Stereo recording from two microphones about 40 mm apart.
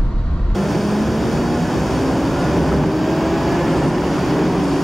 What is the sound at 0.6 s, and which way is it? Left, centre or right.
Vehicle, centre.